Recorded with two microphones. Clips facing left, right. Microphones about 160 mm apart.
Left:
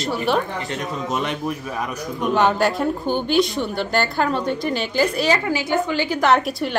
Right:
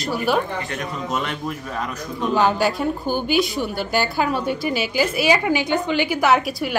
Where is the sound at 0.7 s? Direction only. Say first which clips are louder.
Left 1 dB; 20° left (ahead or behind).